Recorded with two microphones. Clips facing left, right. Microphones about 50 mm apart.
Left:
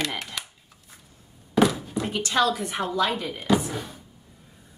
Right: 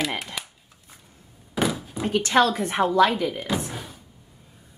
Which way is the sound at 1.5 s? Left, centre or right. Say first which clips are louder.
Left 4 dB; centre.